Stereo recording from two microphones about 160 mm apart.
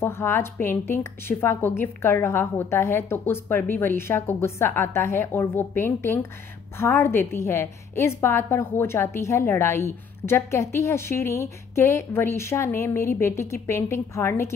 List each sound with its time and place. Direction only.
0.0 s a woman's voice: 15° left (ahead or behind)